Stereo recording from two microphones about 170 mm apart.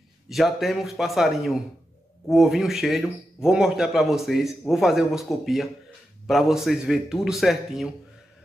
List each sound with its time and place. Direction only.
0.3 s a man's voice: centre (ahead or behind)